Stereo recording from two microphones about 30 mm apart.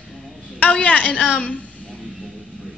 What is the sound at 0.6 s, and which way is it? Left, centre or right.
A woman's voice, left.